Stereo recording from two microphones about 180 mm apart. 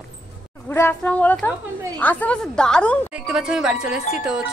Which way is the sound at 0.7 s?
10° left (ahead or behind).